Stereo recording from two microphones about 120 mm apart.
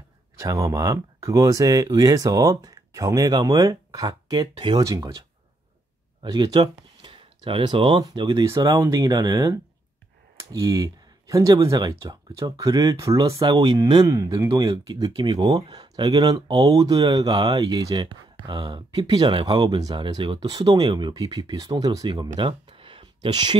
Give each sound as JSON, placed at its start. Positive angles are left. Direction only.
{"t": 0.4, "sound": "speech", "side_deg": -25}
{"t": 6.2, "sound": "speech", "side_deg": -35}
{"t": 13.4, "sound": "speech", "side_deg": -45}
{"t": 14.0, "sound": "speech", "side_deg": -30}
{"t": 22.7, "sound": "a sound", "side_deg": -50}